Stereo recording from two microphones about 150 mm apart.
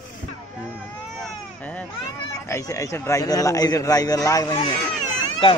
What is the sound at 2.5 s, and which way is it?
A man's voice, 20° left (ahead or behind).